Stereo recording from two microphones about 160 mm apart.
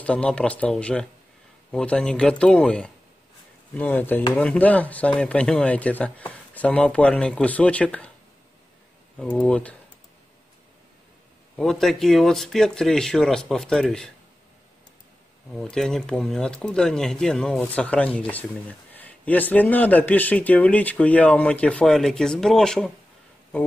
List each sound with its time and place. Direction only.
0.0 s speech: 5° left (ahead or behind)
9.2 s speech: 5° left (ahead or behind)
11.5 s speech: centre (ahead or behind)
15.5 s speech: 5° left (ahead or behind)